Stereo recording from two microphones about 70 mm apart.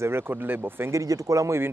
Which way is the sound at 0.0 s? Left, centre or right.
Right.